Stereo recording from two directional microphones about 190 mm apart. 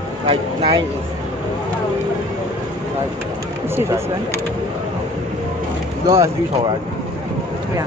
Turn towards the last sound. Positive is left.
turn(degrees=-15)  # may be behind; listen again after turning